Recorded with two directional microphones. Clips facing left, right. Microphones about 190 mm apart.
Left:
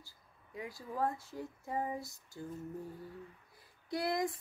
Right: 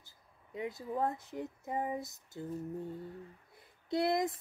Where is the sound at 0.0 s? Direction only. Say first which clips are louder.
Left 2 dB; 20° right (ahead or behind).